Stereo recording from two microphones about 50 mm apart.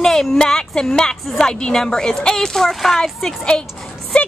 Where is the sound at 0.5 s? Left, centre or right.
Centre.